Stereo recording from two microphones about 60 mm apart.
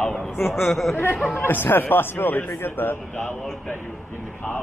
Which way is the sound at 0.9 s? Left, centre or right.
Left.